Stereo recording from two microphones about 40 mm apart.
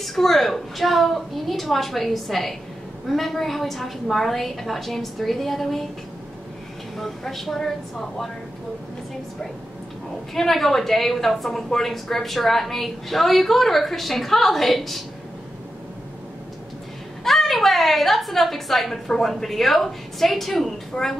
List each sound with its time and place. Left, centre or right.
0.0 s a woman's voice: centre
7.0 s a woman's voice: centre
10.3 s a woman's voice: centre
17.2 s a woman's voice: centre
20.9 s a woman's voice: left